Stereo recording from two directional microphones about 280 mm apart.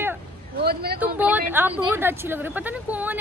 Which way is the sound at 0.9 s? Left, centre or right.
Centre.